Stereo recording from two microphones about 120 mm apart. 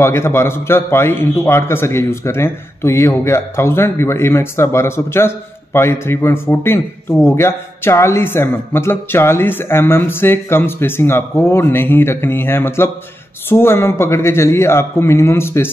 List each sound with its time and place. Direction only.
0.0 s a man's voice: 20° left (ahead or behind)